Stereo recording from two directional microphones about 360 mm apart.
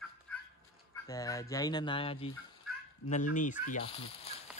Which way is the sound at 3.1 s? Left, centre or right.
Left.